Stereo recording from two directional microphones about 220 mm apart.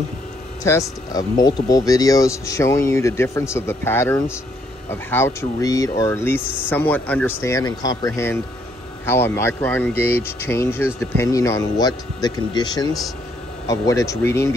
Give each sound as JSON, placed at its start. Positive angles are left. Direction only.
{"t": 0.7, "sound": "speech", "side_deg": 15}
{"t": 6.4, "sound": "speech", "side_deg": -5}
{"t": 6.7, "sound": "speech", "side_deg": 10}